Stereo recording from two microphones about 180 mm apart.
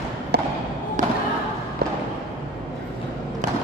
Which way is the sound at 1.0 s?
45° right (ahead or behind).